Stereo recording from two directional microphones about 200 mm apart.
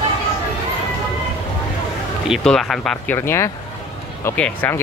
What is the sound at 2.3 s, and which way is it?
Speech, centre (ahead or behind).